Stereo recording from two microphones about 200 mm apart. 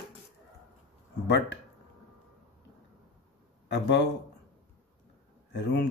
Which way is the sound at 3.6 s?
60° left (ahead or behind).